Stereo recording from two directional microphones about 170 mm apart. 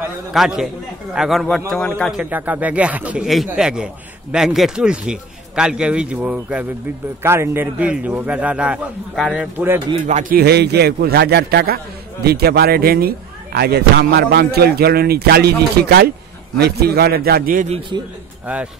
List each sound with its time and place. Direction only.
0.3 s a man's voice: centre (ahead or behind)
10.0 s a man's voice: 50° right (ahead or behind)
17.6 s a man's voice: 30° right (ahead or behind)